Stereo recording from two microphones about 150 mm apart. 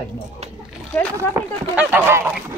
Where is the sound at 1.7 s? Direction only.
15° right (ahead or behind).